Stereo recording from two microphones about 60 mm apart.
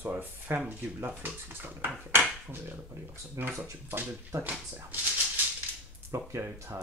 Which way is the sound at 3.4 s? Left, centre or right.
Right.